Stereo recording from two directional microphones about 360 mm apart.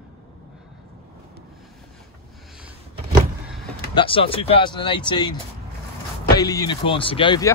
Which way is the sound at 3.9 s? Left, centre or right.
Centre.